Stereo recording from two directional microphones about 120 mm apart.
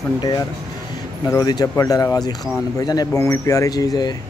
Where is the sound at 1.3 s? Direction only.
35° left (ahead or behind).